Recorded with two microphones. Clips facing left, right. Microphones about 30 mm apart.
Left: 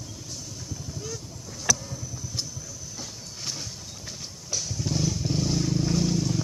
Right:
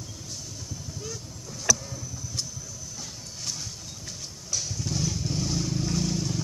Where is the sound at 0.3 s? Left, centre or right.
Centre.